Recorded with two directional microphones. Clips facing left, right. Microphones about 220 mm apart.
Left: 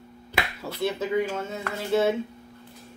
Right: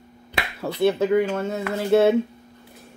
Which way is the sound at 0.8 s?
60° right (ahead or behind).